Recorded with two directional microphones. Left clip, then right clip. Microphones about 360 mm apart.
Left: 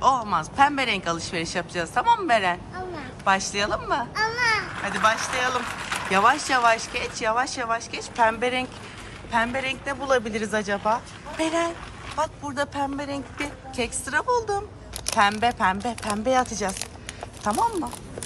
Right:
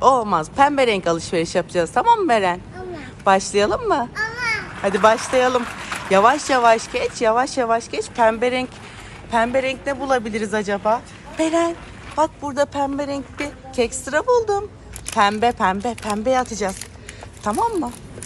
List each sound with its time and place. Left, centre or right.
0.0 s speech: centre
4.1 s babbling: centre
4.8 s a woman's voice: centre